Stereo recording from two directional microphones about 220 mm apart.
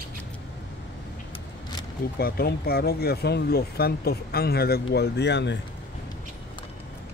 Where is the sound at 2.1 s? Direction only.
45° left (ahead or behind).